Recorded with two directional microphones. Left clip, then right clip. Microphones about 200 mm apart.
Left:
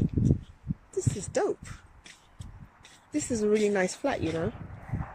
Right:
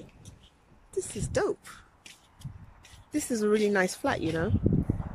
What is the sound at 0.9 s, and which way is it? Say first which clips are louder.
Speech: even; centre (ahead or behind).